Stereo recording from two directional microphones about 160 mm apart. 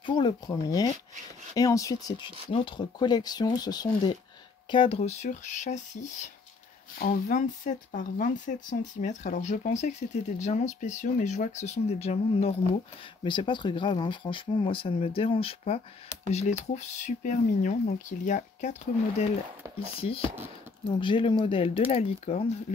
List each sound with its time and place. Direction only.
0.0 s speech: 30° left (ahead or behind); by 6.3 s 50° left (ahead or behind)
7.0 s speech: 65° left (ahead or behind); by 12.5 s 40° left (ahead or behind)
13.2 s speech: 30° left (ahead or behind)